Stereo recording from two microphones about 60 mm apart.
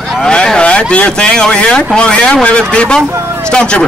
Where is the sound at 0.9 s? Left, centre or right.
Centre.